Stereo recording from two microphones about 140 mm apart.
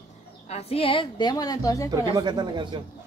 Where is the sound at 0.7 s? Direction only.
40° left (ahead or behind); by 1.9 s 25° left (ahead or behind).